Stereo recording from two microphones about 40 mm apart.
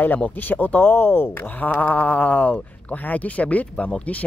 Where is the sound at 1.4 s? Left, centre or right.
Left.